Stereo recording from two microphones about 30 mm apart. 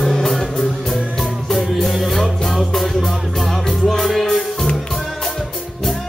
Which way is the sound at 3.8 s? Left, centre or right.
Centre.